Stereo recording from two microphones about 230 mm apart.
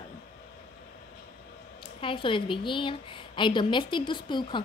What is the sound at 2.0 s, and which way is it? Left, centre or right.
A woman's voice, left.